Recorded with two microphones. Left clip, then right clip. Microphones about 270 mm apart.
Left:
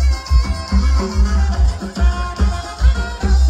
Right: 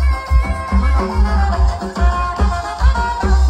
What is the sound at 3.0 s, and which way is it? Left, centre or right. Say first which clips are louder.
Music: right 9 dB; centre.